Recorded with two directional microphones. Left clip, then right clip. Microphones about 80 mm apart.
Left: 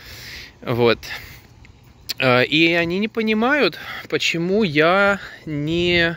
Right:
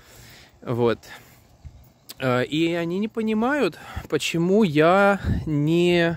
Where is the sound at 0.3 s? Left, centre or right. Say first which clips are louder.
Left 5 dB; right.